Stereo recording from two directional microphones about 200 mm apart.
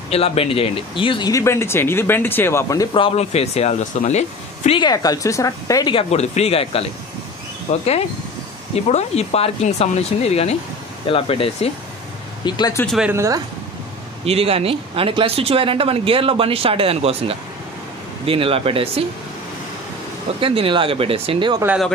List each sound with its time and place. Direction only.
0.1 s speech: 30° left (ahead or behind)
4.8 s speech: 20° left (ahead or behind)
12.8 s speech: centre (ahead or behind)
13.1 s speech: 15° right (ahead or behind)
14.2 s speech: 30° right (ahead or behind)
20.3 s speech: 25° right (ahead or behind)
21.6 s speech: centre (ahead or behind)